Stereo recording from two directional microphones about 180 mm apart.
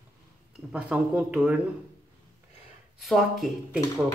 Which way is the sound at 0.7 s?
5° right (ahead or behind).